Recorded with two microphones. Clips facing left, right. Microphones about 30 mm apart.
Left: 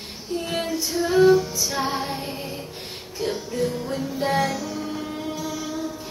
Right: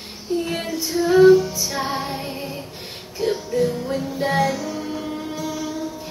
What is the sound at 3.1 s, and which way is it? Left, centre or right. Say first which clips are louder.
Music: right 5 dB; centre.